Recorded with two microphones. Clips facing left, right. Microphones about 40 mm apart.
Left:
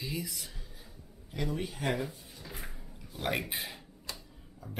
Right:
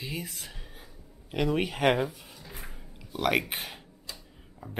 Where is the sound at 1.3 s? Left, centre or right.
Right.